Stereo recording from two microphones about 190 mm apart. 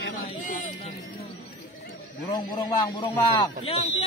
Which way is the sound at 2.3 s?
20° left (ahead or behind).